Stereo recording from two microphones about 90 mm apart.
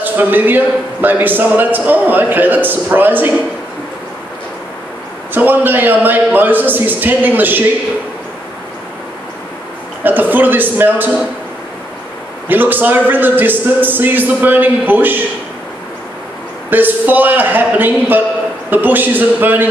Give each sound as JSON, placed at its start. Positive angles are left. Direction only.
{"t": 0.0, "sound": "a man's voice", "side_deg": -20}
{"t": 5.3, "sound": "a man's voice", "side_deg": -20}
{"t": 10.0, "sound": "a man's voice", "side_deg": -20}
{"t": 12.4, "sound": "a man's voice", "side_deg": -20}
{"t": 16.7, "sound": "a man's voice", "side_deg": -20}